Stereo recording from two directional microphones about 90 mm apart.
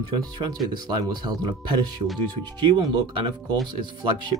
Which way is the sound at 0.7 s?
55° right (ahead or behind).